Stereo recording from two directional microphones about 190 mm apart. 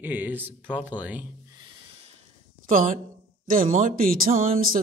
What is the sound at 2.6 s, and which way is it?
A woman's voice, 45° right (ahead or behind).